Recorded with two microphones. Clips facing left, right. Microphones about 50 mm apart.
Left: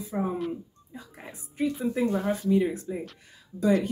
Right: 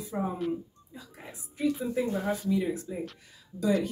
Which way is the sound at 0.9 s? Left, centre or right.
Left.